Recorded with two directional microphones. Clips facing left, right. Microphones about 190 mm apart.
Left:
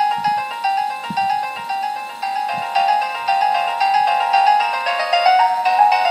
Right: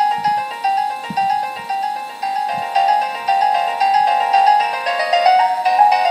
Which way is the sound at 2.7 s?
30° right (ahead or behind).